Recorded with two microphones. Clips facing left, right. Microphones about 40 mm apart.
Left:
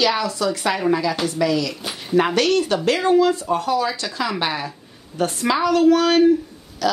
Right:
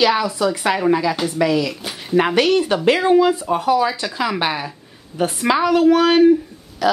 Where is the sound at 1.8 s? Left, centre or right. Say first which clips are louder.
Right 1 dB; centre.